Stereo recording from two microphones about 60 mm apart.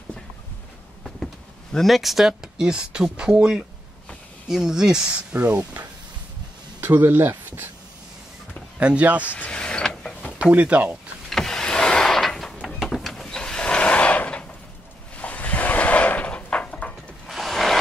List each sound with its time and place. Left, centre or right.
1.2 s speech: centre
5.4 s speech: right
8.7 s speech: right
9.3 s power windows: left
10.5 s speech: right
11.2 s power windows: centre
12.6 s a sound: centre; by 16.9 s left
17.3 s a sound: centre